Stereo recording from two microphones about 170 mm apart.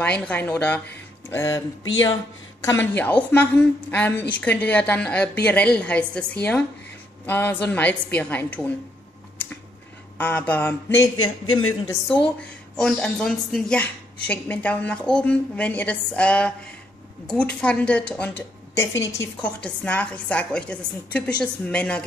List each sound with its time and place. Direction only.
0.2 s speech: 10° left (ahead or behind)
2.6 s a woman's voice: 15° left (ahead or behind)
10.1 s a woman's voice: 10° left (ahead or behind)
12.1 s a woman's voice: 5° left (ahead or behind)
19.4 s a woman's voice: 10° left (ahead or behind)